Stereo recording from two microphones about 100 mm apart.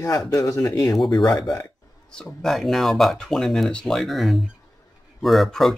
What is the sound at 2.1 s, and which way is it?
Speech, 10° left (ahead or behind).